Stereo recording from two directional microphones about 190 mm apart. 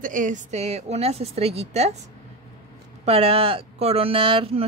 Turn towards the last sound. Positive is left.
turn(degrees=-30)  # may be behind; listen again after turning